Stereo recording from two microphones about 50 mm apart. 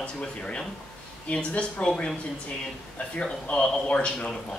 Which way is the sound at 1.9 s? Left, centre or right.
Centre.